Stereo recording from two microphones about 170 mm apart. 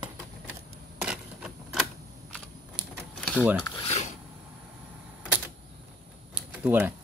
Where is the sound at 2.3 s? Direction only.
Centre (ahead or behind).